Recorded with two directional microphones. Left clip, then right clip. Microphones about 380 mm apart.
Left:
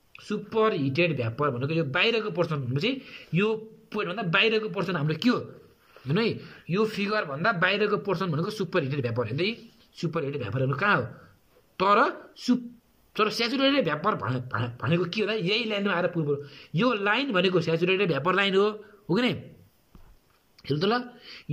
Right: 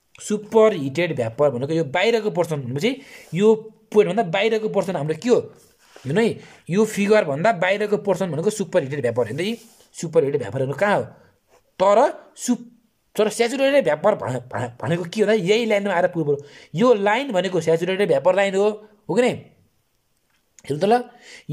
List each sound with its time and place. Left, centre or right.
0.1 s speech: right
20.6 s speech: centre